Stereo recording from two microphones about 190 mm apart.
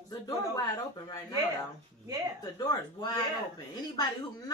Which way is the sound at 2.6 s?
25° left (ahead or behind).